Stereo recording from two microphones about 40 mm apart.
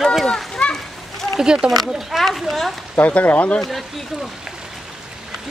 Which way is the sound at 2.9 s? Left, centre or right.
Left.